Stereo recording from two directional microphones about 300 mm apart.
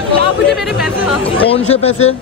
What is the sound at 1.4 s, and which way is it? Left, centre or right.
Speech, centre.